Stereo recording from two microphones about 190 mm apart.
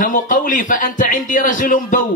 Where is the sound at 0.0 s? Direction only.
45° left (ahead or behind).